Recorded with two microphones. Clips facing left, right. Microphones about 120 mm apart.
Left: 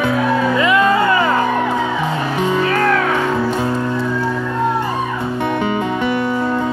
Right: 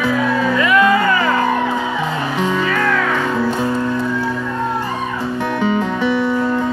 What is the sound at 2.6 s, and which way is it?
Music, 45° left (ahead or behind).